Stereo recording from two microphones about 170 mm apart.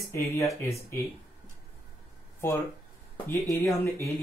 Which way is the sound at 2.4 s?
15° left (ahead or behind).